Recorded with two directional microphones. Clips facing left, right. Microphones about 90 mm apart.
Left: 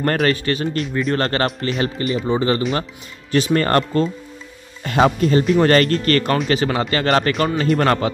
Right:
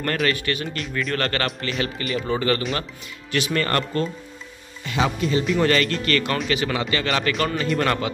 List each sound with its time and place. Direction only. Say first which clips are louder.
0.0 s speech: left 5 dB; 35° left (ahead or behind)
2.2 s speech: left 3 dB; 25° left (ahead or behind)
4.8 s speech: left 7 dB; 50° left (ahead or behind)